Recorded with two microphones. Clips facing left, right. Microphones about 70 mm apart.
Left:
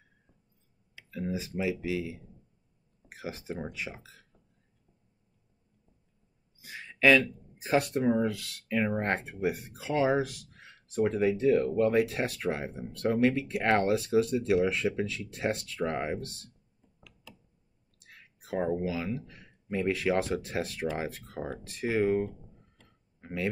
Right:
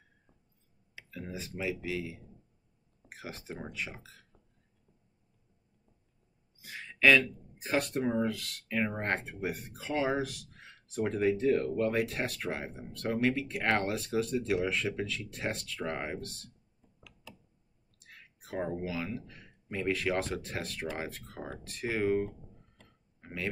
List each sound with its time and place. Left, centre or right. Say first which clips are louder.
1.3 s speech: left 4 dB; centre
3.2 s speech: left 5 dB; centre
6.9 s a sound: left 2 dB; centre
7.2 s speech: left 2 dB; centre
8.6 s speech: left 3 dB; centre
11.9 s speech: left 5 dB; centre
18.1 s a sound: left 4 dB; centre
18.8 s speech: left 4 dB; centre